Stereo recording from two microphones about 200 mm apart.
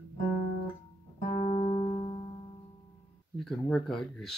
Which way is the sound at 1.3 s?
35° left (ahead or behind).